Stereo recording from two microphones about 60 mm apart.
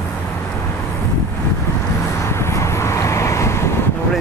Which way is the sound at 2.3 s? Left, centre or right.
Left.